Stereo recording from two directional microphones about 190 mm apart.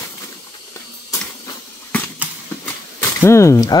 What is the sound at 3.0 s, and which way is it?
Speech, 15° left (ahead or behind).